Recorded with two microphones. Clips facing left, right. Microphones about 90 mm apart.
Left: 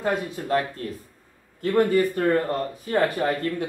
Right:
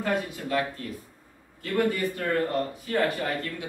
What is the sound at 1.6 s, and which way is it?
Speech, 40° left (ahead or behind).